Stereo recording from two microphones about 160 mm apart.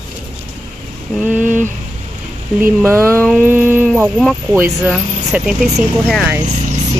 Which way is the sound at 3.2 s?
5° left (ahead or behind).